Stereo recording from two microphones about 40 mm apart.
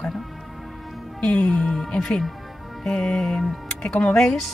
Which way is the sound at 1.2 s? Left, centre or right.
Left.